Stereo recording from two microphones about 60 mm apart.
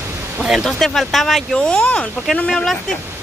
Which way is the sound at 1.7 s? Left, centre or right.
Centre.